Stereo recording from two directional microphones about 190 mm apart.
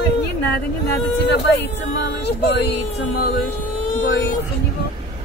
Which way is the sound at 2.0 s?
65° left (ahead or behind).